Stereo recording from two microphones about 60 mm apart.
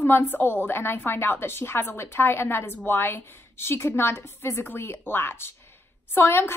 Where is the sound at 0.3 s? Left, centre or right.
Left.